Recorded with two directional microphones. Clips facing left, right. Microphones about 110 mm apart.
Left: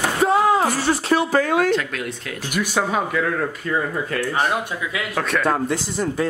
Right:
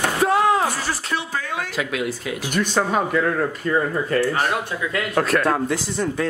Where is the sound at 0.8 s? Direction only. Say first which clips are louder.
Left 7 dB; 25° left (ahead or behind).